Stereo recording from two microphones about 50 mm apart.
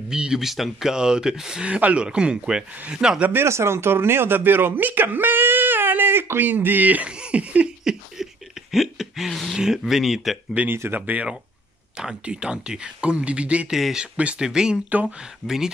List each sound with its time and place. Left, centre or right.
0.1 s speech: centre
1.7 s speech: right
2.0 s speech: centre
3.4 s speech: right
7.1 s speech: right
8.7 s a sound: centre
9.3 s speech: centre
9.6 s speech: centre
10.9 s speech: right
12.0 s speech: centre
13.7 s speech: centre
13.9 s speech: right
14.9 s speech: right
15.4 s speech: centre